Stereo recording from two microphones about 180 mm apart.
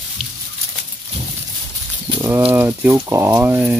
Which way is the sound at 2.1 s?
15° right (ahead or behind).